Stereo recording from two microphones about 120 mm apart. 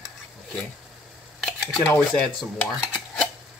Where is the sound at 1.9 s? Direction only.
10° left (ahead or behind).